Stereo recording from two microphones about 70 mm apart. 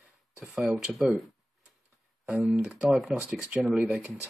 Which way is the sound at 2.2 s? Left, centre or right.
Centre.